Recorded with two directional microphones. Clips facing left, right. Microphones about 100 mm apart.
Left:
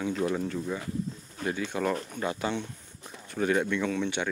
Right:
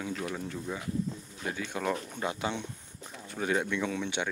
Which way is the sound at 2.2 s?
15° right (ahead or behind).